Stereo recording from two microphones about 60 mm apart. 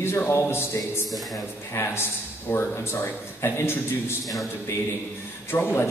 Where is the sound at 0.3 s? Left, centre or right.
Left.